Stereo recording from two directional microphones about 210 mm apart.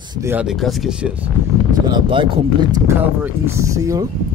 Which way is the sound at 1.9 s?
25° right (ahead or behind).